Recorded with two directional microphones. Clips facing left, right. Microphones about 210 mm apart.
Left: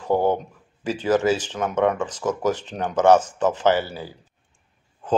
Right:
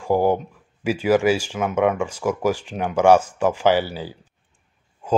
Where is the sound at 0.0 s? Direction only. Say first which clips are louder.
Right 2 dB; 10° right (ahead or behind).